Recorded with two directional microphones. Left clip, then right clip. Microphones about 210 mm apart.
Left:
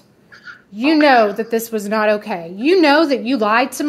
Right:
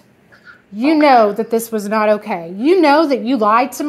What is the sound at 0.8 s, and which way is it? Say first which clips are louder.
A woman's voice: right 1 dB; 15° right (ahead or behind).